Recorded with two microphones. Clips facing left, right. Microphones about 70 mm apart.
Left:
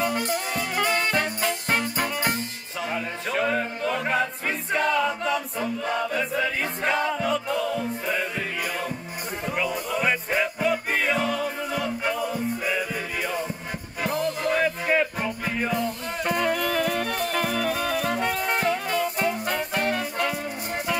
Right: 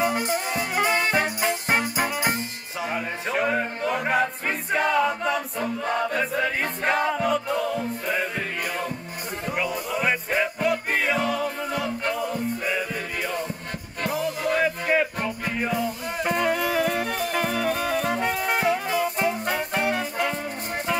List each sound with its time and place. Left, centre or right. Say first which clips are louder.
0.0 s music: right 2 dB; centre
5.9 s chant: right 3 dB; centre
7.2 s music: right 1 dB; centre
14.0 s music: even; centre